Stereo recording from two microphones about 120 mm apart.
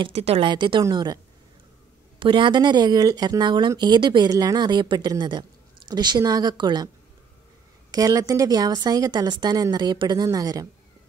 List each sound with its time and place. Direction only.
0.0 s speech: 60° right (ahead or behind)
0.5 s speech: 40° right (ahead or behind)
2.1 s speech: 45° right (ahead or behind)
7.9 s speech: 30° right (ahead or behind)